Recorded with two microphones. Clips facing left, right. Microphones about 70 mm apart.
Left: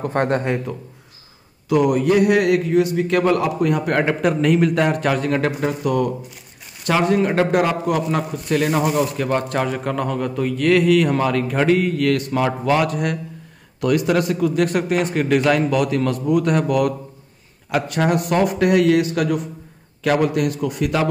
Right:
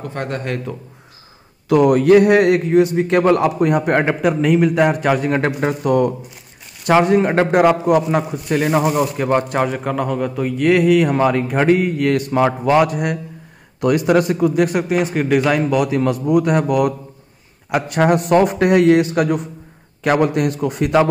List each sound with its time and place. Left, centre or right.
0.0 s a man's voice: left
1.7 s a man's voice: right
4.2 s a man's voice: centre; by 5.5 s right
5.6 s a man's voice: right